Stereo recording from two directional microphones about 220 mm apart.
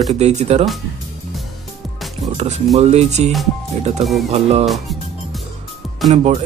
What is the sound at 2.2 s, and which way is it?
Speech, 30° right (ahead or behind).